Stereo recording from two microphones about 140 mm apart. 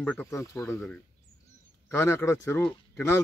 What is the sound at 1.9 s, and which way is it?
Speech, 15° left (ahead or behind).